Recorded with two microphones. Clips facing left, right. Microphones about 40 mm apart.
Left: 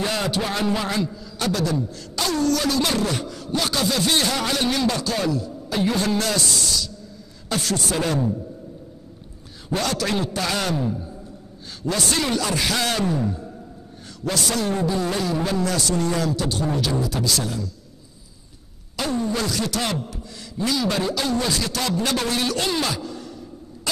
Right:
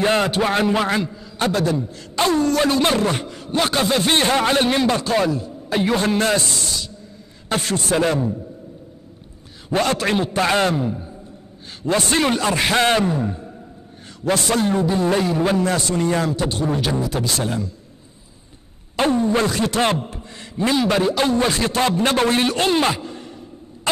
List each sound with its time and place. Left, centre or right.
0.0 s a man's voice: right
9.8 s a man's voice: right
18.9 s a man's voice: right